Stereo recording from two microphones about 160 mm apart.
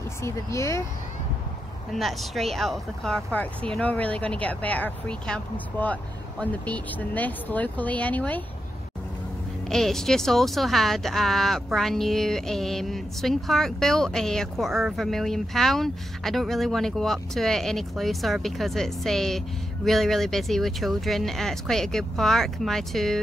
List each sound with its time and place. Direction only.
0.2 s speech: 20° left (ahead or behind)
2.0 s speech: centre (ahead or behind)
9.7 s speech: centre (ahead or behind)